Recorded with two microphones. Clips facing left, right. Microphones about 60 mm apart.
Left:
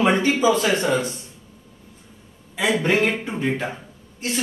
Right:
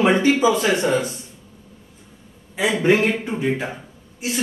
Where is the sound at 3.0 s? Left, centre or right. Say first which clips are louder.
Right 1 dB; centre.